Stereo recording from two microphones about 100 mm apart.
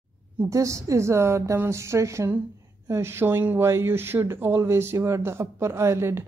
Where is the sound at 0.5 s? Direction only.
30° right (ahead or behind).